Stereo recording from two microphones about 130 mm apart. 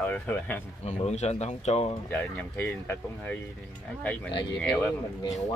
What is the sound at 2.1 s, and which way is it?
Speech, 15° left (ahead or behind).